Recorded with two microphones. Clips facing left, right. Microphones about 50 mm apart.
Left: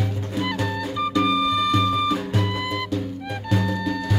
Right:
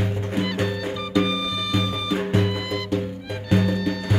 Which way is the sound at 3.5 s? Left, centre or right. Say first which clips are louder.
Right 3 dB; right.